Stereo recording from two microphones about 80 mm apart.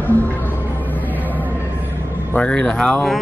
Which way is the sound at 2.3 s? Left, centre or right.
Centre.